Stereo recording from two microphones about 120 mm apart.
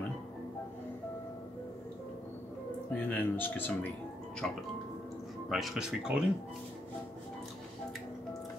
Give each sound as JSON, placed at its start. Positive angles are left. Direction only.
{"t": 2.9, "sound": "a man's voice", "side_deg": 15}